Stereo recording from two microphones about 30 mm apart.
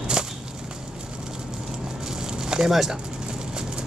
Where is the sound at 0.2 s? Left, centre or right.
Right.